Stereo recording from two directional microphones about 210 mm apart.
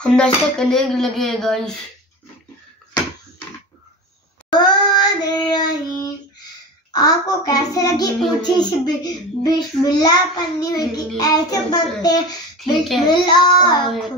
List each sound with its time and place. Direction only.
0.0 s speech: 5° left (ahead or behind)
4.5 s child singing: 20° left (ahead or behind)
6.9 s a child's voice: 20° left (ahead or behind)
13.8 s speech: centre (ahead or behind)